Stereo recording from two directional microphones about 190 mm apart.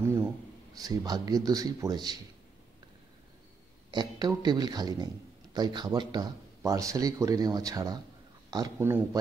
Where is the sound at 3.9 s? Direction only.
20° right (ahead or behind).